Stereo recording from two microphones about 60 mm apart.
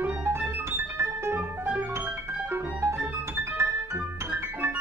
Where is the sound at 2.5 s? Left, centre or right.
Right.